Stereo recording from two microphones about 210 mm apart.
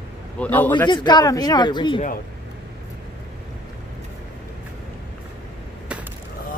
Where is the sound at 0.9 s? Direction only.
20° left (ahead or behind).